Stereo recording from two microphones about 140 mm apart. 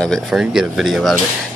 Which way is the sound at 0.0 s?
Centre (ahead or behind).